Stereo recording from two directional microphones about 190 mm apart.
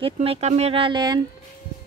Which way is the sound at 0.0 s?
30° right (ahead or behind).